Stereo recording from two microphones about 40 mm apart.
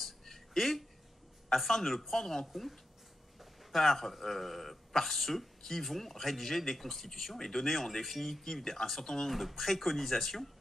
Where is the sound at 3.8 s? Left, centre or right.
Centre.